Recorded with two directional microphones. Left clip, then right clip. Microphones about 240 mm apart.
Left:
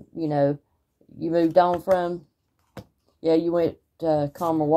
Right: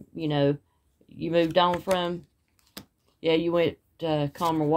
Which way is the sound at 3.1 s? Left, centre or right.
Right.